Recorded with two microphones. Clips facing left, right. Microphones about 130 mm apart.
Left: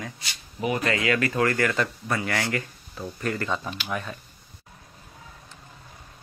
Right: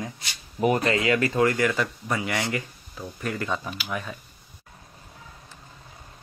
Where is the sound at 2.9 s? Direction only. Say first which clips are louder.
Left 2 dB; centre (ahead or behind).